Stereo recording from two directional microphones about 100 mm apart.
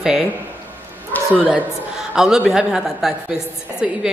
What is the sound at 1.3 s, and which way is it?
A woman's voice, 15° right (ahead or behind).